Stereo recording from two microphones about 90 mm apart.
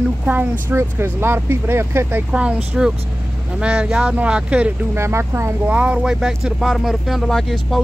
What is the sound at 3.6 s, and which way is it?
Speech, 10° right (ahead or behind).